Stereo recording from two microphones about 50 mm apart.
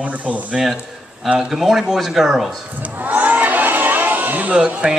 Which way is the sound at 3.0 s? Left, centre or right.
Right.